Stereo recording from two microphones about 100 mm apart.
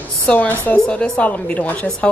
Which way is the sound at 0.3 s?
15° left (ahead or behind).